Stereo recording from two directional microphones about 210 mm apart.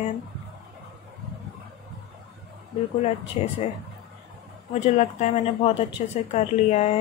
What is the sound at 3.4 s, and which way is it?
Speech, 30° left (ahead or behind).